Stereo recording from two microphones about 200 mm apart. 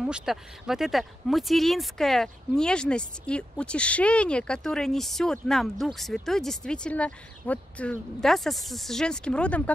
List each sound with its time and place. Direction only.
0.0 s speech: 5° right (ahead or behind)